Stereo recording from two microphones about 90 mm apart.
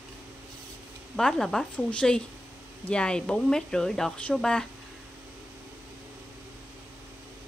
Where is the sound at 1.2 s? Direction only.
5° left (ahead or behind).